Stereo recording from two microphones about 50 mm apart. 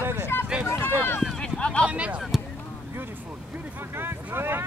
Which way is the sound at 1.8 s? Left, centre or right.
Right.